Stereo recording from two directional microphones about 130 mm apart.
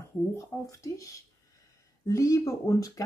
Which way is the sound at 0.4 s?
25° left (ahead or behind).